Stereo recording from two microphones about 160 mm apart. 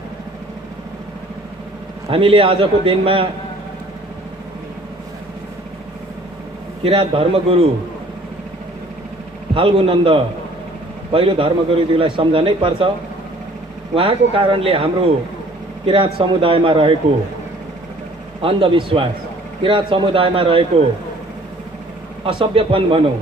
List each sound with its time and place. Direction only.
2.0 s a man's voice: 35° right (ahead or behind)
6.8 s a man's voice: 35° right (ahead or behind)
9.5 s a man's voice: 35° right (ahead or behind)
13.9 s a man's voice: 35° right (ahead or behind)
18.4 s a man's voice: 35° right (ahead or behind)
22.2 s a man's voice: 35° right (ahead or behind)